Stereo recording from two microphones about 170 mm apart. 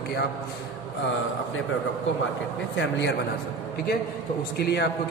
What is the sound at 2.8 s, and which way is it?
Speech, 90° left.